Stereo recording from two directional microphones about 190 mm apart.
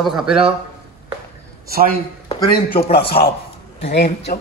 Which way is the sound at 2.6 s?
50° left (ahead or behind).